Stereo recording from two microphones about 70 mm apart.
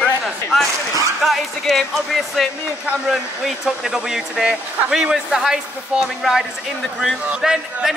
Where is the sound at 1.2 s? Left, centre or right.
Centre.